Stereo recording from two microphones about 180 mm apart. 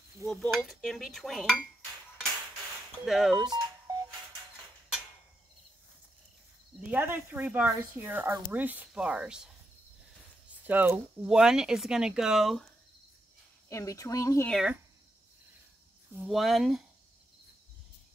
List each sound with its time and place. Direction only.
0.3 s speech: 5° left (ahead or behind)
3.1 s speech: centre (ahead or behind)
3.4 s telephone dialing: 20° right (ahead or behind)
6.8 s speech: 10° right (ahead or behind)
10.6 s speech: 10° right (ahead or behind)
13.7 s speech: 20° left (ahead or behind)
14.5 s speech: 5° right (ahead or behind)
16.2 s speech: centre (ahead or behind)